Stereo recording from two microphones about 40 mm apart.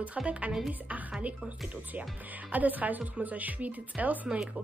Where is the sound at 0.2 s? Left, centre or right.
Right.